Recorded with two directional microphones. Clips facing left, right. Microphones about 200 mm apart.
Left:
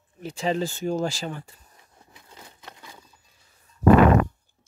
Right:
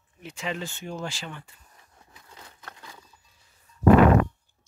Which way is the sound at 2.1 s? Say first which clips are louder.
Left 1 dB; 20° left (ahead or behind).